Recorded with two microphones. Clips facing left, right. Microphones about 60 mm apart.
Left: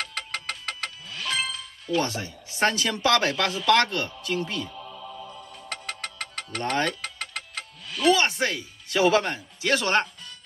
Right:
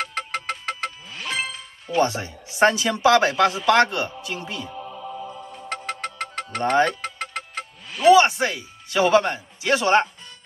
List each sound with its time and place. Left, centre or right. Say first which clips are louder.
0.0 s music: right 5 dB; centre
2.5 s speech: right 6 dB; centre
4.7 s music: right 5 dB; right